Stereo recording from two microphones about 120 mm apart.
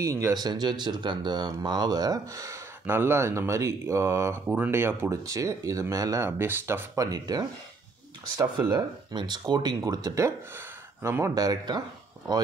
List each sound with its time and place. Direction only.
0.0 s speech: 25° right (ahead or behind)